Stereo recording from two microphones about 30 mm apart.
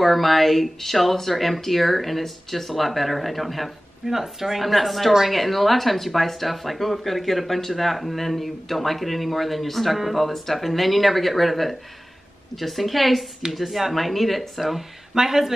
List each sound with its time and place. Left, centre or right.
0.0 s speech: centre
4.1 s speech: centre
15.1 s speech: centre